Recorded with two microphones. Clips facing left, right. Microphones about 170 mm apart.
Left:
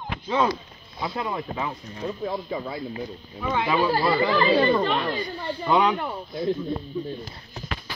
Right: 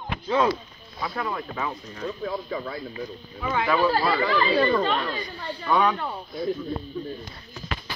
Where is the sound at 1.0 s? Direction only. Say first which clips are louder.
Left 1 dB; 20° left (ahead or behind).